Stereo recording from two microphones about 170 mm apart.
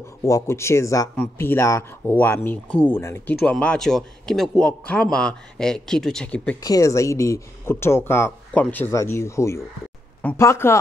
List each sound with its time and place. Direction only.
0.2 s a man's voice: 15° left (ahead or behind)
6.6 s speech: 20° left (ahead or behind)